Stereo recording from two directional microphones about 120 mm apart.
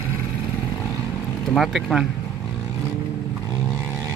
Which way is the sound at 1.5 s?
Centre (ahead or behind).